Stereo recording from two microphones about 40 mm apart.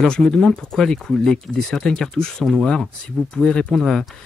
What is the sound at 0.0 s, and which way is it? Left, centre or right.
Speech, centre.